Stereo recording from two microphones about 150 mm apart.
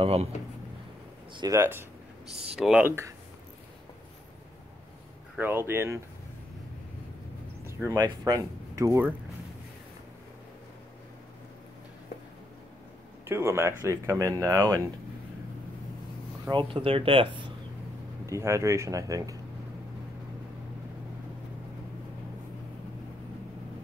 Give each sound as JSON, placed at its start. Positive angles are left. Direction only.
{"t": 0.0, "sound": "speech", "side_deg": -45}
{"t": 1.3, "sound": "speech", "side_deg": -25}
{"t": 1.6, "sound": "speech", "side_deg": -15}
{"t": 5.4, "sound": "speech", "side_deg": -15}
{"t": 7.9, "sound": "speech", "side_deg": -30}
{"t": 13.2, "sound": "speech", "side_deg": -15}
{"t": 16.4, "sound": "speech", "side_deg": -35}
{"t": 18.2, "sound": "speech", "side_deg": -20}